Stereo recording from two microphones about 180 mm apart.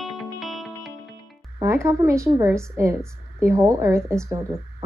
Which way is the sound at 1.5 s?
15° right (ahead or behind).